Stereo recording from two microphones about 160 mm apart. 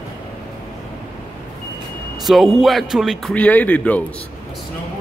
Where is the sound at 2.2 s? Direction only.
Centre (ahead or behind).